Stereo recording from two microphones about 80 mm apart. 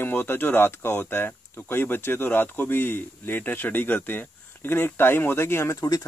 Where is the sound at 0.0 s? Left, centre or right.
Left.